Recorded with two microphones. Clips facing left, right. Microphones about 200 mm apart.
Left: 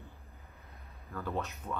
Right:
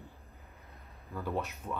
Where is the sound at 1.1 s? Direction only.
15° right (ahead or behind).